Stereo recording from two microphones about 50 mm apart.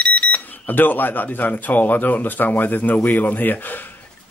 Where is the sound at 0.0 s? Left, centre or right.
Left.